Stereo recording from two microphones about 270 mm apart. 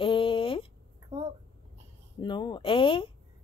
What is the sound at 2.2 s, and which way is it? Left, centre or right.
Speech, centre.